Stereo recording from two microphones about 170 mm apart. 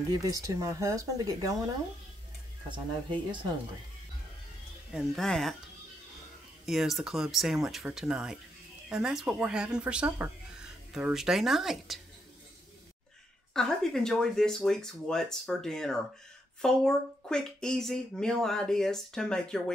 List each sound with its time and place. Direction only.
0.1 s speech: 20° right (ahead or behind)
2.7 s speech: 30° right (ahead or behind)
4.9 s speech: centre (ahead or behind)
6.6 s speech: centre (ahead or behind)
13.5 s speech: 5° left (ahead or behind)